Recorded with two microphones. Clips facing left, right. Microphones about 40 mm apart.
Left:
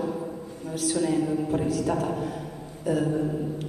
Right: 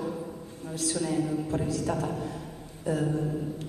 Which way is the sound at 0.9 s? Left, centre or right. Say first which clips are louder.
Left 4 dB; centre.